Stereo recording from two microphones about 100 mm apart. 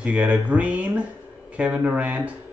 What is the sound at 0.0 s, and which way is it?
Speech, 10° right (ahead or behind).